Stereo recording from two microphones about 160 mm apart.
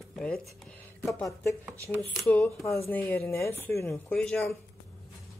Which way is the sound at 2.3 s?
15° left (ahead or behind).